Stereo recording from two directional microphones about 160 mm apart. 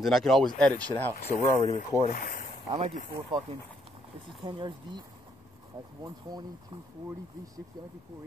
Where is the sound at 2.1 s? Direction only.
60° left (ahead or behind).